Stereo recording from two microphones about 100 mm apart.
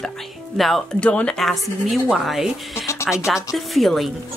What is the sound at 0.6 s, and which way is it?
Speech, centre (ahead or behind).